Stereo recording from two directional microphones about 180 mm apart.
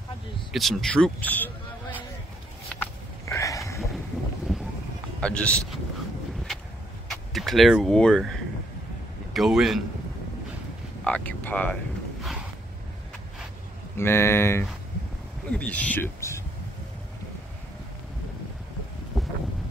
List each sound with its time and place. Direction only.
0.5 s a sound: centre (ahead or behind)
3.3 s a sound: 15° left (ahead or behind)
5.2 s speech: 5° left (ahead or behind)
7.1 s a man's voice: centre (ahead or behind)
11.1 s speech: 10° left (ahead or behind)
13.9 s speech: 15° left (ahead or behind)
19.1 s boat: centre (ahead or behind)